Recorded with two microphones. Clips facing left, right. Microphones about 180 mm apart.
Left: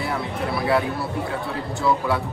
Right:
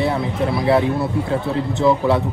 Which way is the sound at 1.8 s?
20° right (ahead or behind).